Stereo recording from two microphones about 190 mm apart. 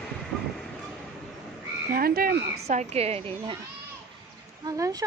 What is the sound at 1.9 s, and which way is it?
Frog, 50° right (ahead or behind).